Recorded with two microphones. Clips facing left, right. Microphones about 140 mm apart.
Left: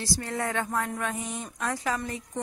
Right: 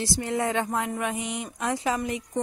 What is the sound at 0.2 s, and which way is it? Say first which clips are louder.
A woman's voice: right 6 dB; 20° right (ahead or behind).